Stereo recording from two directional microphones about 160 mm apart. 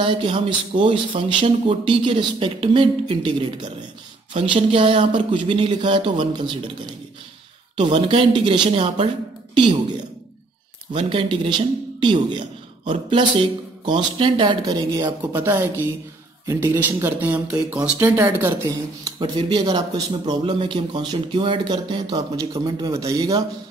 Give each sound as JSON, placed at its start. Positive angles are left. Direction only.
{"t": 0.0, "sound": "speech", "side_deg": -30}
{"t": 7.7, "sound": "speech", "side_deg": -30}
{"t": 10.9, "sound": "a man's voice", "side_deg": -30}
{"t": 19.0, "sound": "speech", "side_deg": -30}